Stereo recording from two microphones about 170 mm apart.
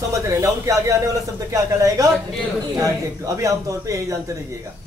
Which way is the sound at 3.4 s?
20° right (ahead or behind).